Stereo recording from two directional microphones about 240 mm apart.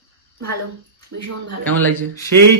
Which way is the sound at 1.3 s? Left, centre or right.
Right.